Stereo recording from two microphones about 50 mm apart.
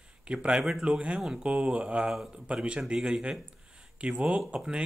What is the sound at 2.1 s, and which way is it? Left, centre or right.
Speech, centre.